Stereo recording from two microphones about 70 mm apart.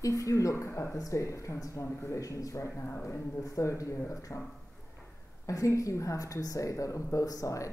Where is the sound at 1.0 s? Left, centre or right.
Left.